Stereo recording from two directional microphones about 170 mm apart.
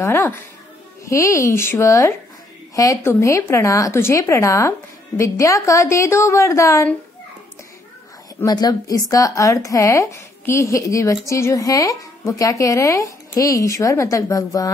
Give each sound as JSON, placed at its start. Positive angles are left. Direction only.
{"t": 0.0, "sound": "a woman's voice", "side_deg": 15}
{"t": 8.4, "sound": "a woman's voice", "side_deg": 20}